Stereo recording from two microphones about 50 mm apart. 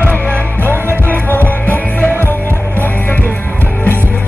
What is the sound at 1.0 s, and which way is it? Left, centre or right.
Music, left.